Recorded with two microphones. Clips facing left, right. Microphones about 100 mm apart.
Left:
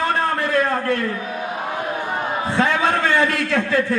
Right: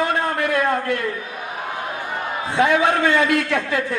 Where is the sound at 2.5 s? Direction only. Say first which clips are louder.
Right 3 dB; 15° right (ahead or behind).